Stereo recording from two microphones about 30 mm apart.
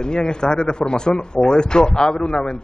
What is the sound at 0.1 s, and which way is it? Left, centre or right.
A woman's voice, left.